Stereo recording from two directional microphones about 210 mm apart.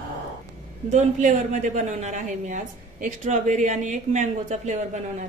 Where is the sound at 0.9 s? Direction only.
35° right (ahead or behind).